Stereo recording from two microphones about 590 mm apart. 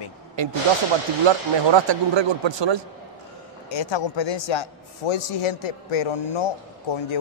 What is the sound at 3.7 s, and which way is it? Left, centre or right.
Speech, left.